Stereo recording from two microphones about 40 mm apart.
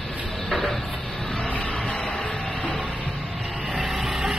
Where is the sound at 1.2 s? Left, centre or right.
Left.